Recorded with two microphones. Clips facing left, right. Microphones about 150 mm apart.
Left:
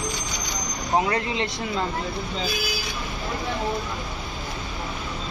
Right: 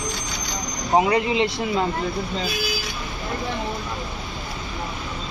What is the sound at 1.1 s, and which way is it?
Speech, 10° right (ahead or behind).